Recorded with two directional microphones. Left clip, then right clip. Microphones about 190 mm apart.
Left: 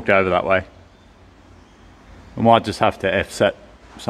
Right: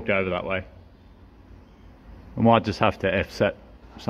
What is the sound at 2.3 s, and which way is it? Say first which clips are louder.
Speech: left 5 dB; 15° left (ahead or behind).